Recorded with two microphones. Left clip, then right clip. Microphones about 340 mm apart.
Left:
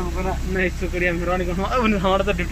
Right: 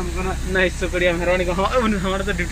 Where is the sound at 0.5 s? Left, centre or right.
Right.